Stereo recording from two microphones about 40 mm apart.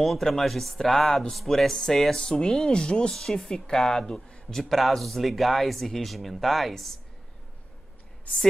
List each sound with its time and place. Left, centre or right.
0.0 s speech: centre
3.2 s speech: centre